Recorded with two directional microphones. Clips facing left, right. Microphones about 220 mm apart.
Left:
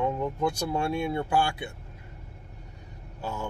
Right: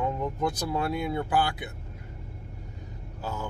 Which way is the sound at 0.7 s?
25° left (ahead or behind).